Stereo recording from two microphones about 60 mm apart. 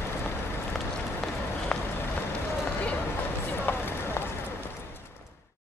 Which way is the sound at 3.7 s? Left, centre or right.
Left.